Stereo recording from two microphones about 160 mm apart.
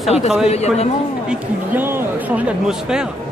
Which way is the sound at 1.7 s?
15° right (ahead or behind).